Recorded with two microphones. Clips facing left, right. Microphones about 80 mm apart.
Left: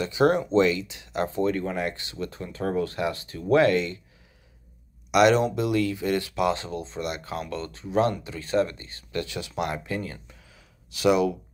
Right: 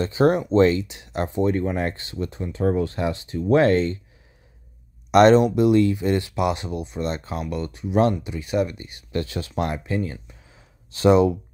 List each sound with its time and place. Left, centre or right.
0.0 s speech: right
5.1 s speech: right
5.6 s speech: right
9.2 s speech: right
10.2 s a sound: right